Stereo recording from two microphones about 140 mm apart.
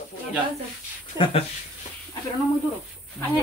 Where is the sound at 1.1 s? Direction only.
35° left (ahead or behind).